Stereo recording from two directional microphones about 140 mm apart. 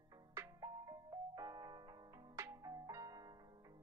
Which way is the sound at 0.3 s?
25° right (ahead or behind).